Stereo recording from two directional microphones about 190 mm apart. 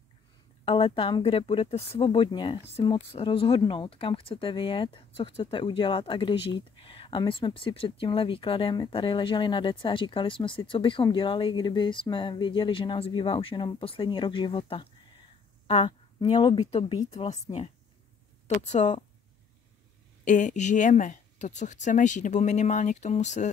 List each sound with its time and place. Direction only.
0.7 s a woman's voice: 30° left (ahead or behind)
20.2 s speech: 40° left (ahead or behind)